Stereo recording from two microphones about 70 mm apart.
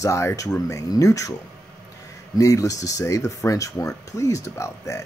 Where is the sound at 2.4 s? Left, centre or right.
Left.